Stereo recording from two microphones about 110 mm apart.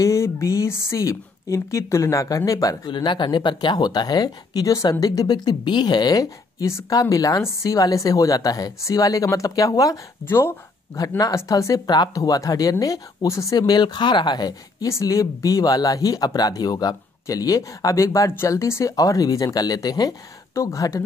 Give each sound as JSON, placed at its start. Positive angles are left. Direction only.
{"t": 0.0, "sound": "speech", "side_deg": 25}